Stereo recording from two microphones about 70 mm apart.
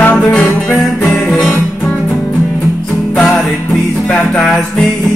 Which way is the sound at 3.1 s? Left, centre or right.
Centre.